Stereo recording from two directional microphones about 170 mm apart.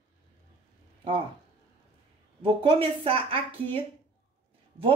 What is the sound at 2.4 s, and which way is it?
A woman's voice, 30° right (ahead or behind).